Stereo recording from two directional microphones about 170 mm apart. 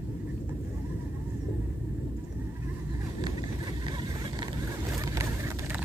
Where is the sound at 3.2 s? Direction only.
25° right (ahead or behind).